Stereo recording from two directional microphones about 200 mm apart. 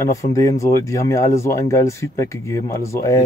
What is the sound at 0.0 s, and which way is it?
Speech, 15° left (ahead or behind).